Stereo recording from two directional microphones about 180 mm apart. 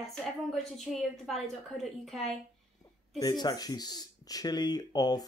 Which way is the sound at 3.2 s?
20° left (ahead or behind).